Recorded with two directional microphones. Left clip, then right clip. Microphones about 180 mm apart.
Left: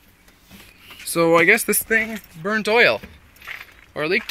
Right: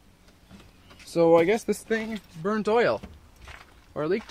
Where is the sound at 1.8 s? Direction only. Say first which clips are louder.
Left 9 dB; 10° right (ahead or behind).